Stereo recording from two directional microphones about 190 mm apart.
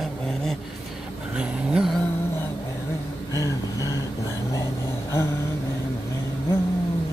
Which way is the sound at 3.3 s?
15° left (ahead or behind).